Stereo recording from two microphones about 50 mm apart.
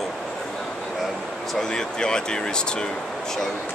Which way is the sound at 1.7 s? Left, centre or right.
Centre.